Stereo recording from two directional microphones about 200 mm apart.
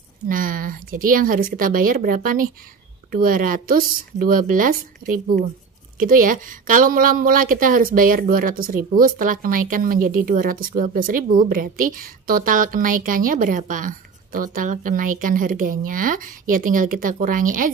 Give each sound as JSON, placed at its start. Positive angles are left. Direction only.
{"t": 0.3, "sound": "a woman's voice", "side_deg": -45}